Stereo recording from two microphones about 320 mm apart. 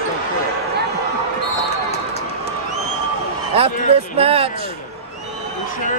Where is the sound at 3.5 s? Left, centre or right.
Centre.